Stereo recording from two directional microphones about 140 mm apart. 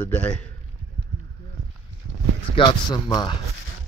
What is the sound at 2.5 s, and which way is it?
Speech, 40° left (ahead or behind).